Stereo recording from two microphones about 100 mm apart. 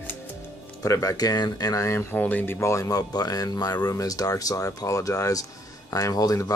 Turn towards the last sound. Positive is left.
turn(degrees=35)  # may be behind; listen again after turning